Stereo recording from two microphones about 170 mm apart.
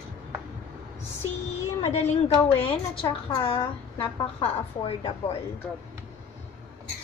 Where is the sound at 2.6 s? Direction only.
30° left (ahead or behind).